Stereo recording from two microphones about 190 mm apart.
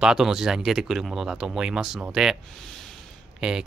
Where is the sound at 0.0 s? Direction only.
5° right (ahead or behind).